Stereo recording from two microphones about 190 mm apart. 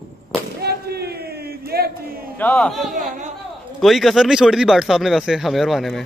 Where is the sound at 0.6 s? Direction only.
55° right (ahead or behind).